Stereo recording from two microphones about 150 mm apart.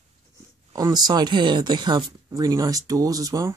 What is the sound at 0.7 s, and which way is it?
Speech, 25° right (ahead or behind).